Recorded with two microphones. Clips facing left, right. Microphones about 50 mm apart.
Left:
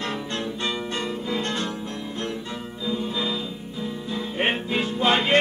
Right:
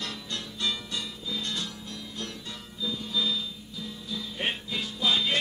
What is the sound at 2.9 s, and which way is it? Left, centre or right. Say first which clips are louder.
Music: left 4 dB; left.